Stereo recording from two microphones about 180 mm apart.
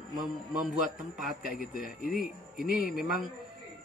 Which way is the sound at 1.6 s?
55° left (ahead or behind).